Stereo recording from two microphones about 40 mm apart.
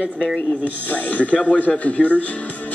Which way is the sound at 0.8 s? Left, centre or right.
Left.